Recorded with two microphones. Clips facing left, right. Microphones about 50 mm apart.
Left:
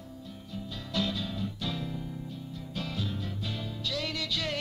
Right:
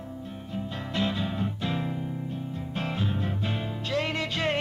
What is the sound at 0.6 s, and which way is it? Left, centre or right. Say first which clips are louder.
Music: right 3 dB; right.